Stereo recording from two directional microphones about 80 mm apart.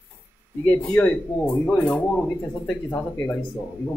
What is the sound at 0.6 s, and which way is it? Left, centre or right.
Speech, centre.